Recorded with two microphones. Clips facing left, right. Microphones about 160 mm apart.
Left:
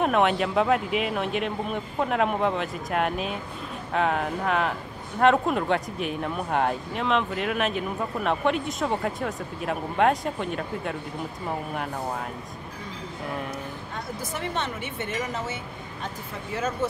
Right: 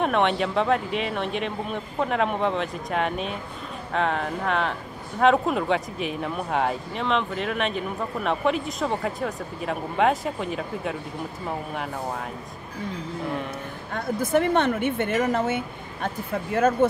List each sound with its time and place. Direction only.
0.0 s speech: centre (ahead or behind)
13.9 s speech: 55° right (ahead or behind)